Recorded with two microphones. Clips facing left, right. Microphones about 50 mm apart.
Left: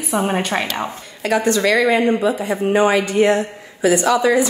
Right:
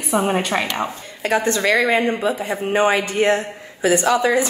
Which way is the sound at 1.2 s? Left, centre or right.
Right.